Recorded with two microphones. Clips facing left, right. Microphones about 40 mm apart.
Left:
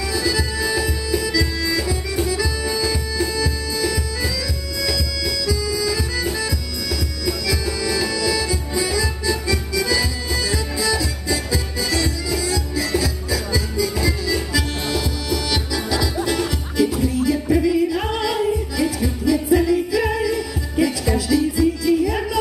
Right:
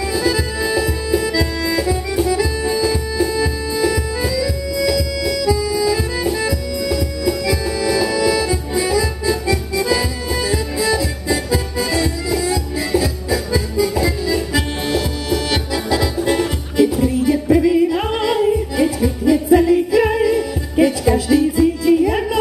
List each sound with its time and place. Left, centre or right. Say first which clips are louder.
0.1 s music: right 3 dB; right
1.6 s accordion: right 4 dB; right
3.3 s music: right 4 dB; centre
14.0 s accordion: right 3 dB; right
16.3 s music: right 5 dB; right